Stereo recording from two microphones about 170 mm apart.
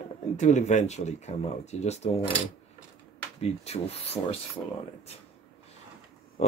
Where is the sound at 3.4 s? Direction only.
40° left (ahead or behind).